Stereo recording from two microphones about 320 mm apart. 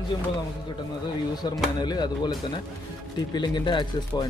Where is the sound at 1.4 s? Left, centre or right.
Centre.